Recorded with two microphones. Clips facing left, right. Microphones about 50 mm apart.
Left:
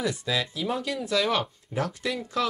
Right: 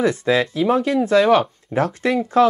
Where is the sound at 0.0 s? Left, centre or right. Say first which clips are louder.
Right 10 dB; right.